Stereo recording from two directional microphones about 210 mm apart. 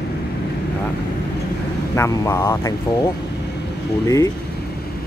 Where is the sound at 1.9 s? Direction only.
15° left (ahead or behind).